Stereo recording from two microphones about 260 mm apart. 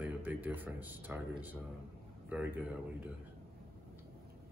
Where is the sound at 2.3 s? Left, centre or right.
Centre.